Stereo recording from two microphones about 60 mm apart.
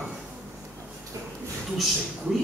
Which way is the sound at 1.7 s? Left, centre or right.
Centre.